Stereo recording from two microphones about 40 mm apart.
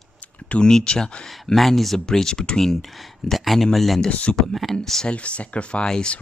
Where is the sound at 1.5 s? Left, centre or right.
Centre.